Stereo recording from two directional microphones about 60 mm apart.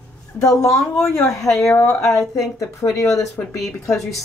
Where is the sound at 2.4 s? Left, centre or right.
Left.